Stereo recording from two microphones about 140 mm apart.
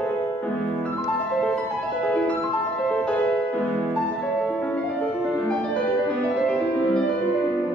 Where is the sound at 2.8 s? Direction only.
10° left (ahead or behind).